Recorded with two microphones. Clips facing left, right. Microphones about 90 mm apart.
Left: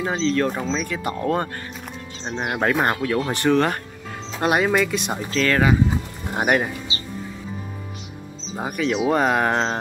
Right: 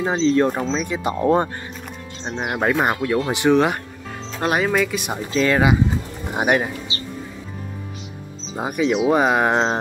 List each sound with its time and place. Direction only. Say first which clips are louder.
0.1 s speech: right 5 dB; 20° right (ahead or behind)
0.5 s speech: right 2 dB; 5° right (ahead or behind)
0.8 s speech: right 4 dB; 20° right (ahead or behind)
2.2 s speech: right 1 dB; 5° right (ahead or behind)
4.4 s speech: even; centre (ahead or behind)
5.3 s speech: right 2 dB; 15° right (ahead or behind)
8.5 s speech: right 3 dB; 15° right (ahead or behind)